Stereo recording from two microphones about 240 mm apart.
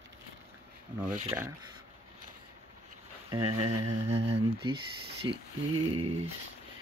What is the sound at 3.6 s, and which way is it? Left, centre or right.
Music, right.